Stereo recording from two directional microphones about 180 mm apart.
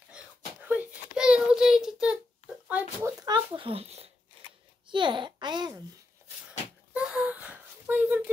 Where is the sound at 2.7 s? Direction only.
15° right (ahead or behind).